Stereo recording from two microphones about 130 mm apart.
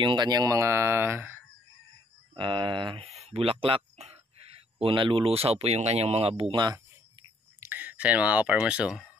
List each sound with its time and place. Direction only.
0.0 s speech: 35° right (ahead or behind); by 1.4 s 15° right (ahead or behind)
2.3 s speech: 35° right (ahead or behind)
3.1 s a sound: 55° right (ahead or behind)
4.7 s speech: 40° right (ahead or behind)
7.6 s speech: 15° right (ahead or behind)